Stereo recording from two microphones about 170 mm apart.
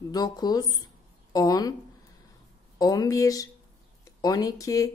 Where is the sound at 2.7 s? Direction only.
20° left (ahead or behind).